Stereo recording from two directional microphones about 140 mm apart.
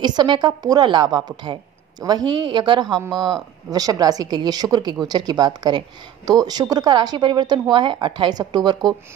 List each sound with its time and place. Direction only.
0.0 s a woman's voice: 30° right (ahead or behind)